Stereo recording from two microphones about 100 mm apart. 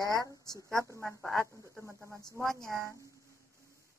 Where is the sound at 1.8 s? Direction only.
30° right (ahead or behind).